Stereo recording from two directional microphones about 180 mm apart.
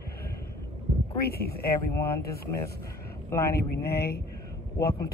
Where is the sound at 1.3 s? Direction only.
60° left (ahead or behind).